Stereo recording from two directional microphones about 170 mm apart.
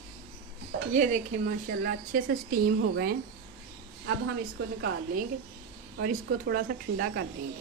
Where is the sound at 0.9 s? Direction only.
45° right (ahead or behind).